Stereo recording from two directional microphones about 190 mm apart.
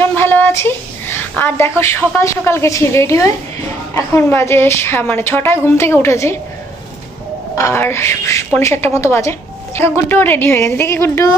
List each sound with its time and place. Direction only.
0.1 s a sound: 10° left (ahead or behind)
1.8 s a woman's voice: 15° left (ahead or behind)
7.5 s a woman's voice: 15° left (ahead or behind)